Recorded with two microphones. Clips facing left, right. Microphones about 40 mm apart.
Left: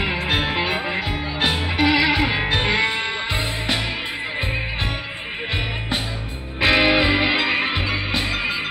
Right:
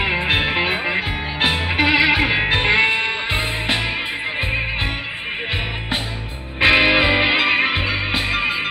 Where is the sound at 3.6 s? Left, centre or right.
Right.